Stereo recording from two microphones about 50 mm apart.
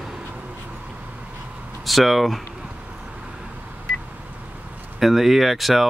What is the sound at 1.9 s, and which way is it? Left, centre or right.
Speech, centre.